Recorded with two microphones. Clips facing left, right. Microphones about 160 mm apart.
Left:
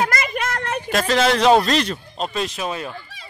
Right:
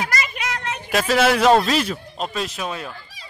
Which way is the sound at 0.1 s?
50° left (ahead or behind).